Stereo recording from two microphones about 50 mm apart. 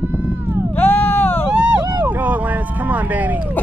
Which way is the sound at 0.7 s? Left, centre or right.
Left.